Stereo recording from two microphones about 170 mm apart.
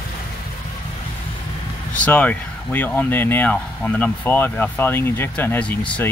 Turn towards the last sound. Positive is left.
turn(degrees=10)  # may be behind; listen again after turning